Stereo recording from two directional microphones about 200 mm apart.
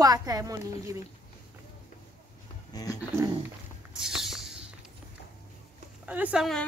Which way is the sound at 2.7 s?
20° left (ahead or behind).